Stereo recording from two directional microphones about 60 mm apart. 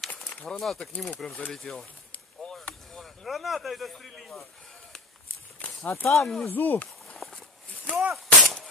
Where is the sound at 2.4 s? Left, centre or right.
Centre.